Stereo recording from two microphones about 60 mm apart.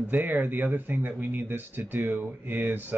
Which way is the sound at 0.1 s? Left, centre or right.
Right.